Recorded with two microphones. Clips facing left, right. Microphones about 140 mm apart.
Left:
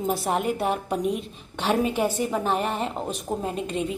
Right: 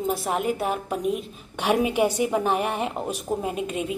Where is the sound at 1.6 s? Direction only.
15° right (ahead or behind).